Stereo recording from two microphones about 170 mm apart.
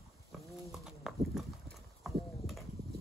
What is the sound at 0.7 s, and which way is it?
Horse, 5° right (ahead or behind).